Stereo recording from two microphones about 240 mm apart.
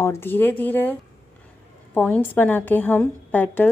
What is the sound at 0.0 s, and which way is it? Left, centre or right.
Speech, centre.